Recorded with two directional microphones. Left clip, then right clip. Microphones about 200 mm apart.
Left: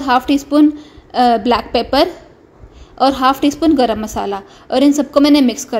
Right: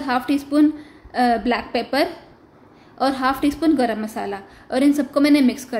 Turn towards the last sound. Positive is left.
turn(degrees=25)  # may be behind; listen again after turning